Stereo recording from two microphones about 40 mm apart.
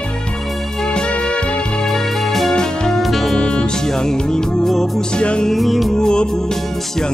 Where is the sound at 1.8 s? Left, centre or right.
Centre.